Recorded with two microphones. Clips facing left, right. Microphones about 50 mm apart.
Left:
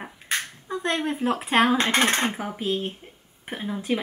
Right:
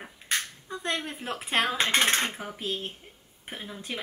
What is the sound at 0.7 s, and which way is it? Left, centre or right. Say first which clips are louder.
Speech: left 8 dB; centre.